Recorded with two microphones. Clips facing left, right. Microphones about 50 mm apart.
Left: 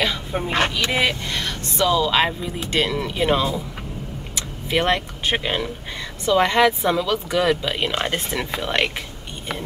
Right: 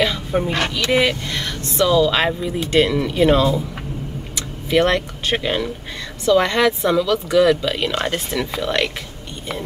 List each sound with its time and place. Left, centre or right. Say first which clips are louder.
0.0 s a sound: right 4 dB; centre
0.5 s speech: right 1 dB; left
1.3 s speech: right 1 dB; centre